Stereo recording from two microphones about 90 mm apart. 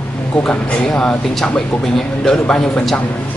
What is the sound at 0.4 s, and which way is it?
Speech, 10° left (ahead or behind).